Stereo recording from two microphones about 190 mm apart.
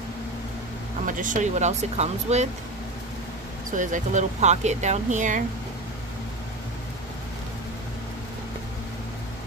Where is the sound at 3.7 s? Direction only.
40° right (ahead or behind).